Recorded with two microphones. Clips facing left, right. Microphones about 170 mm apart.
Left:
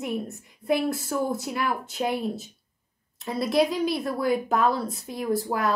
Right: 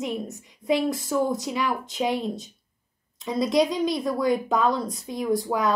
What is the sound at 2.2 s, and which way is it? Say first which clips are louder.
Speech: even; 5° left (ahead or behind).